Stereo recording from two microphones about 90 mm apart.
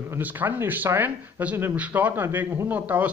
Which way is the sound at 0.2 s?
20° right (ahead or behind).